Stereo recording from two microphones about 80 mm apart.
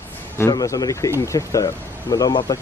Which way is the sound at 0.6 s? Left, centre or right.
Left.